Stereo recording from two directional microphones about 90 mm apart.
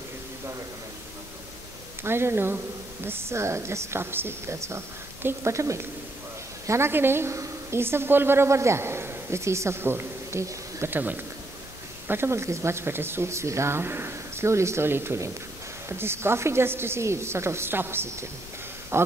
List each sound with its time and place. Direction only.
2.0 s a woman's voice: 25° right (ahead or behind)
10.9 s speech: 20° right (ahead or behind)